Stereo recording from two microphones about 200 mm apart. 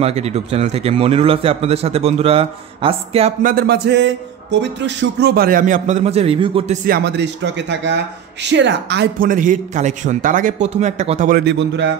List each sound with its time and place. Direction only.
0.0 s a man's voice: 30° right (ahead or behind)
3.4 s music: 50° right (ahead or behind); by 6.8 s 25° right (ahead or behind)
6.9 s a man's voice: 60° right (ahead or behind); by 11.4 s 40° right (ahead or behind)
11.4 s a man's voice: 65° right (ahead or behind)